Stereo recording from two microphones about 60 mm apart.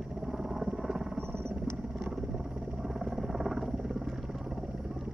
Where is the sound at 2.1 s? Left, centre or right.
Centre.